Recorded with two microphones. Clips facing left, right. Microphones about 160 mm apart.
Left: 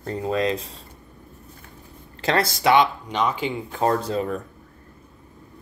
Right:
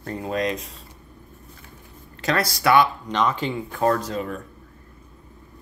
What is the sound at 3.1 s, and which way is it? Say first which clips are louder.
Speech: right 1 dB; 10° left (ahead or behind).